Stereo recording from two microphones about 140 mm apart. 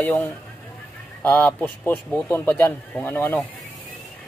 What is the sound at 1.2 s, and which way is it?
Speech, 15° left (ahead or behind).